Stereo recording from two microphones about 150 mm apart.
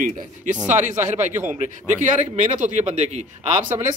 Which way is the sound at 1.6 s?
55° right (ahead or behind).